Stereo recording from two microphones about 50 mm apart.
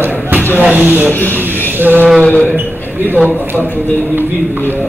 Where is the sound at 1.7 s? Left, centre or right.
Right.